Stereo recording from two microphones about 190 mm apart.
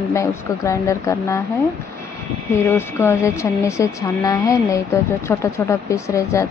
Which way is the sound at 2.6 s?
15° left (ahead or behind).